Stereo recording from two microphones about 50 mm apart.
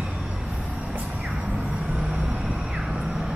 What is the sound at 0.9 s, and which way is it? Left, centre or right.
Vehicle, right.